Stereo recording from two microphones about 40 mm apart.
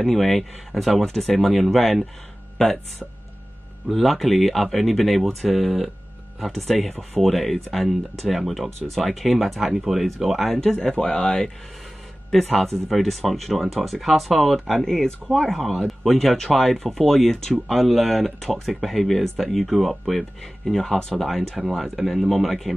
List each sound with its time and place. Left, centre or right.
0.0 s speech: centre
3.9 s speech: centre
10.5 s speech: centre
12.3 s speech: centre
20.8 s speech: centre
21.2 s speech: centre